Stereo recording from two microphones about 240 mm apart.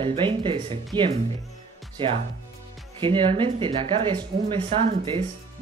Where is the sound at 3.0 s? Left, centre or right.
Right.